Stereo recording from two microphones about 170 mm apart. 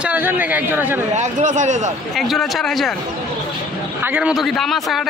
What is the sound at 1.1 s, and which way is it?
Speech, 45° right (ahead or behind).